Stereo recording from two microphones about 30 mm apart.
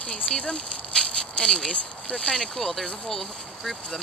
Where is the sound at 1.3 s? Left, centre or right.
Left.